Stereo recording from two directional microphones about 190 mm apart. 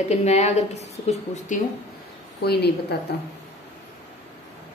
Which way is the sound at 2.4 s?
60° left (ahead or behind).